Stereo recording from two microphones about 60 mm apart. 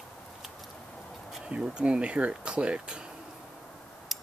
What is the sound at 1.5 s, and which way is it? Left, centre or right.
Speech, centre.